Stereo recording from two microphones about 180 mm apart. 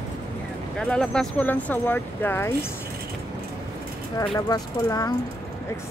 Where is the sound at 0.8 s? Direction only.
5° left (ahead or behind).